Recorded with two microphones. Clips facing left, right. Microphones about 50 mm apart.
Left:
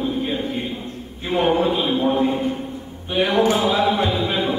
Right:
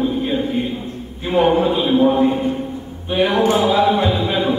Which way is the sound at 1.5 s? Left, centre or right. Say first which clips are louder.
Right 1 dB; centre.